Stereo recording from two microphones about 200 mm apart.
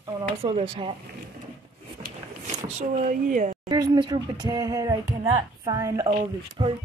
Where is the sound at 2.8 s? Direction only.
40° right (ahead or behind).